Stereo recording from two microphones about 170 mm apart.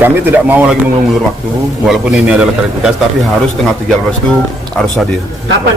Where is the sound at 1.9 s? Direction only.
5° right (ahead or behind).